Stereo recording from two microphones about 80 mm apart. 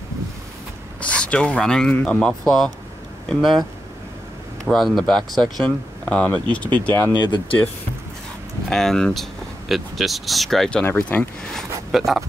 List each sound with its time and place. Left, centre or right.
1.0 s speech: centre
3.3 s speech: centre
4.6 s speech: centre
6.0 s speech: centre
7.2 s speech: left
8.6 s speech: centre
10.9 s speech: left
11.5 s speech: centre